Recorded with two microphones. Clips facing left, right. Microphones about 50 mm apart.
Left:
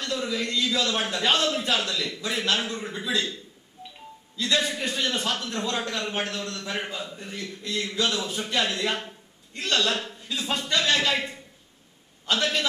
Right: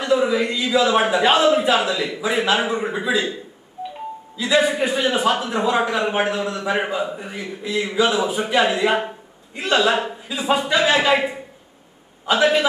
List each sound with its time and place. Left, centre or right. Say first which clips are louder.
0.0 s a man's voice: right 10 dB; centre